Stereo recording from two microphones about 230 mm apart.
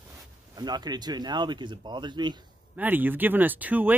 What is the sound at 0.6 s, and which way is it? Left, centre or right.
Speech, centre.